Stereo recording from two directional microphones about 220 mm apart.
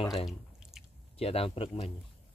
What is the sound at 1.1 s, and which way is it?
Speech, 25° left (ahead or behind).